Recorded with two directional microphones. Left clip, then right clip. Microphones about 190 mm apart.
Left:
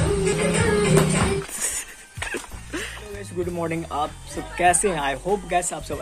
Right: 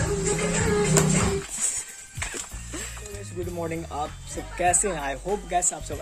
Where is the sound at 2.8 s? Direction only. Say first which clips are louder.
Left 5 dB; centre (ahead or behind).